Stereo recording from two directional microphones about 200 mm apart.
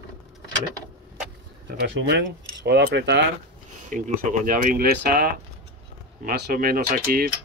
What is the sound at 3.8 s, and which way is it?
Speech, 40° right (ahead or behind).